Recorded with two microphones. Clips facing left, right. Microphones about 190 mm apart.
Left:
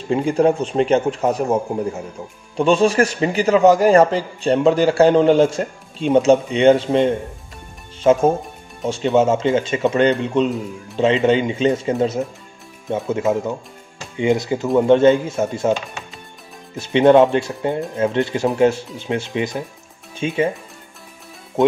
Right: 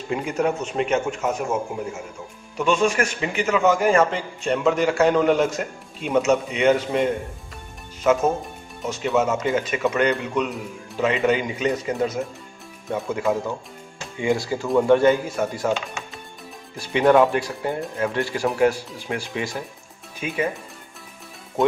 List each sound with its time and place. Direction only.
0.1 s a man's voice: 30° left (ahead or behind)
16.7 s speech: 25° left (ahead or behind)